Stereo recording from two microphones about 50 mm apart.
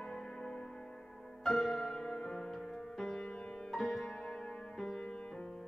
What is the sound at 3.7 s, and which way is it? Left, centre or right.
Music, centre.